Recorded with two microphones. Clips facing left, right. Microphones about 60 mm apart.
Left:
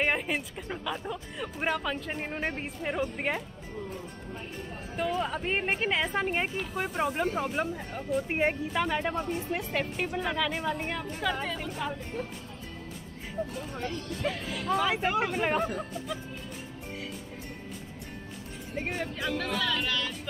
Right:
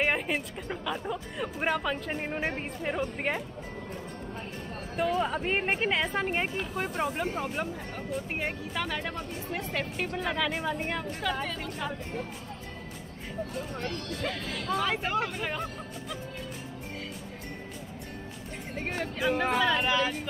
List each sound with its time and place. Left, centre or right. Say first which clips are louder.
0.0 s speech: even; centre
4.9 s speech: right 2 dB; centre
9.8 s speech: left 1 dB; centre
13.9 s speech: even; right
14.2 s speech: left 3 dB; centre
15.4 s speech: left 6 dB; left
18.8 s speech: right 1 dB; centre
19.6 s speech: right 5 dB; right